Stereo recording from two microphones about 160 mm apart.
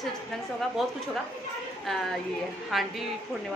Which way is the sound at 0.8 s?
Centre (ahead or behind).